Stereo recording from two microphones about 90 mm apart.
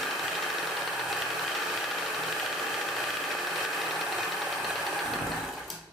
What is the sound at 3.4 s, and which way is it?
Engine knocking, centre (ahead or behind).